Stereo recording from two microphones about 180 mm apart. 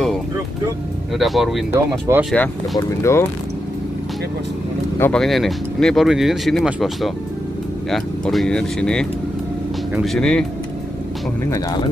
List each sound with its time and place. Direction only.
1.1 s speech: centre (ahead or behind)
1.7 s speech: 15° right (ahead or behind)
2.3 s speech: 10° left (ahead or behind)
4.9 s speech: 10° left (ahead or behind)
5.2 s speech: centre (ahead or behind)